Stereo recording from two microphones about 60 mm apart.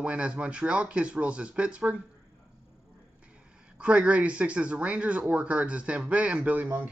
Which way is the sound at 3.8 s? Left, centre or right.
Centre.